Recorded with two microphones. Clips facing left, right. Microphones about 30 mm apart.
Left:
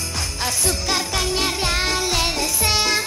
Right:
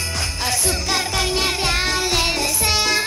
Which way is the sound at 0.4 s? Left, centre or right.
Centre.